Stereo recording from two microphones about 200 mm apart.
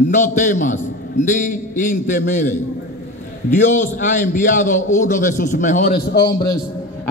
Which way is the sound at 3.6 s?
40° left (ahead or behind).